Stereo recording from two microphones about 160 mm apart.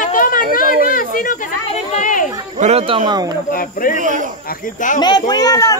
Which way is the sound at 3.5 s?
60° left (ahead or behind).